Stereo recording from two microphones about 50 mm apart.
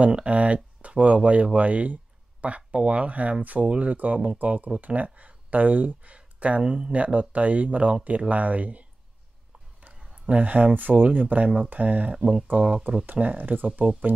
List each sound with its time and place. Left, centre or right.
0.0 s speech: right
9.9 s a sound: centre
10.2 s speech: right